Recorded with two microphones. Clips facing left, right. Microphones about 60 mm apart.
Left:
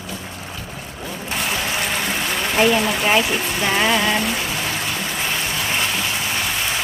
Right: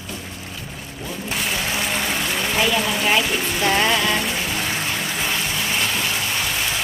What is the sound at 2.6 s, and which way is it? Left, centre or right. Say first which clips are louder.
Speech: left 5 dB; left.